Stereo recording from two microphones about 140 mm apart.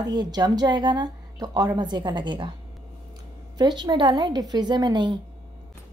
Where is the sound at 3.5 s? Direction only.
30° right (ahead or behind).